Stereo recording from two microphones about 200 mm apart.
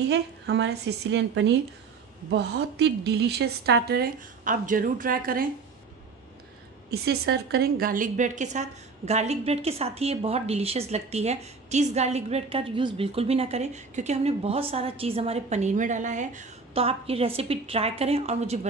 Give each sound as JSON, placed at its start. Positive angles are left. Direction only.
{"t": 0.1, "sound": "a woman's voice", "side_deg": -55}
{"t": 6.9, "sound": "a woman's voice", "side_deg": -50}